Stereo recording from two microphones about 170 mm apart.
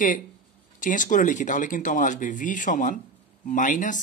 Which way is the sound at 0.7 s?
50° left (ahead or behind).